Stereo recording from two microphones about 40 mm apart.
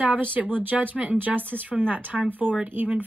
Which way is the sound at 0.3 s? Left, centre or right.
Right.